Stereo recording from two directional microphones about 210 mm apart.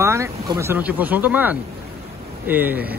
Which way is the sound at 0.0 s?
15° right (ahead or behind).